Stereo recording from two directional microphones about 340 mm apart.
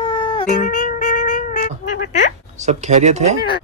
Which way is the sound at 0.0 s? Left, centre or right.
Centre.